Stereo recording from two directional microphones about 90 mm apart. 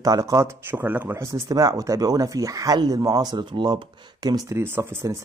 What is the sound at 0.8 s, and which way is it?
Speech, 20° right (ahead or behind).